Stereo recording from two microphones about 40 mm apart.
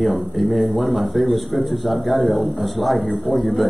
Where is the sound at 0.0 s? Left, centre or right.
Centre.